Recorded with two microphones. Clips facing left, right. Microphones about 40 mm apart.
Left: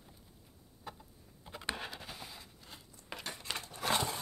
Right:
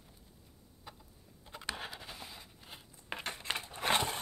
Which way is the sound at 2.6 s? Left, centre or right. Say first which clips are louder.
Right 1 dB; right.